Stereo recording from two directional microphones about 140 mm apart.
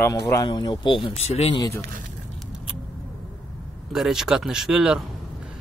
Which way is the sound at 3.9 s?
5° right (ahead or behind).